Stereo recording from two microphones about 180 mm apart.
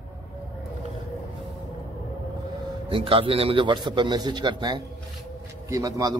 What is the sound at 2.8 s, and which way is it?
A man's voice, 30° right (ahead or behind).